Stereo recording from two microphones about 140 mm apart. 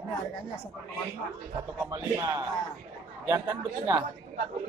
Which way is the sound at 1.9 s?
25° right (ahead or behind).